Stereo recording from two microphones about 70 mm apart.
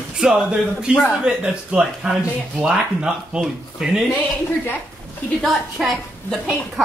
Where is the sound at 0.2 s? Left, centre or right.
Centre.